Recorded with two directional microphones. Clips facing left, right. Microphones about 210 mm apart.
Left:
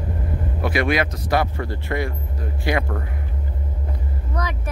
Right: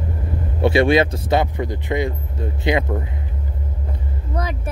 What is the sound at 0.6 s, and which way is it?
Speech, 25° right (ahead or behind).